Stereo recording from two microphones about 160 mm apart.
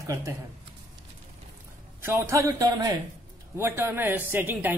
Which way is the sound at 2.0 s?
15° right (ahead or behind).